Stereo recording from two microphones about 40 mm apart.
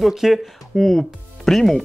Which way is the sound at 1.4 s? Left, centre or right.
Centre.